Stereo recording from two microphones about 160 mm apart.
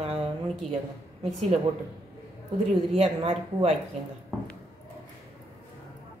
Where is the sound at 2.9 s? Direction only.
40° right (ahead or behind).